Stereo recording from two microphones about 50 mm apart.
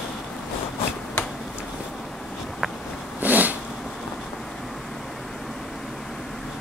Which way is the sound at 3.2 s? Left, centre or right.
Right.